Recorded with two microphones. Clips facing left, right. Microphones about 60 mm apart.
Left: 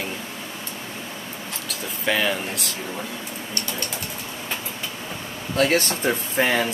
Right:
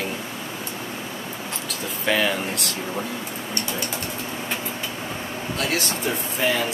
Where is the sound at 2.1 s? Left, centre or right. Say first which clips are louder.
Right 1 dB; centre.